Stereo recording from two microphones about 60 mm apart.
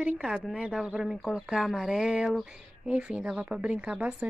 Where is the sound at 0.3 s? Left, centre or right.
Centre.